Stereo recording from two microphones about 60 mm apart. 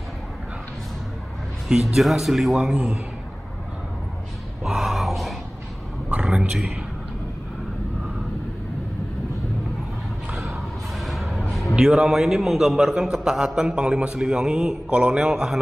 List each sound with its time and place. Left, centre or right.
1.7 s speech: centre
2.5 s a man's voice: centre
4.6 s a sound: centre
6.2 s a man's voice: centre
10.3 s a sound: centre
11.7 s a man's voice: centre